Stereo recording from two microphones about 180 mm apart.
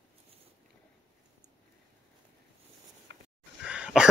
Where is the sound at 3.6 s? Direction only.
5° right (ahead or behind).